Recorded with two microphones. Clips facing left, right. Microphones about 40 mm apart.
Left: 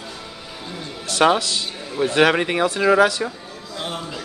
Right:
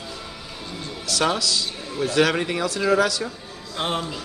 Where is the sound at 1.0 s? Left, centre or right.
Left.